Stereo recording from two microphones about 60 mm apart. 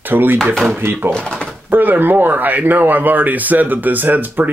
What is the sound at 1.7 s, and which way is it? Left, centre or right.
Speech, right.